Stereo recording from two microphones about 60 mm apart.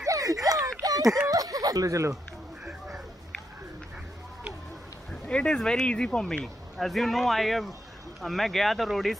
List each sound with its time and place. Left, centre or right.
0.0 s a sound: right
1.3 s snicker: right
5.2 s speech: centre